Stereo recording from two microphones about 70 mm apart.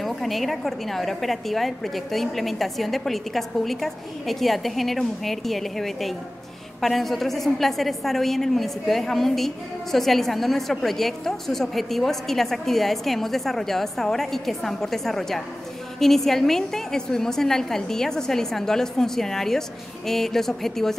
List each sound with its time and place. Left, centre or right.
0.0 s a woman's voice: centre